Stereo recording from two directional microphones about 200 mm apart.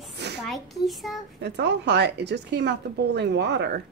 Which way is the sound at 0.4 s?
Centre (ahead or behind).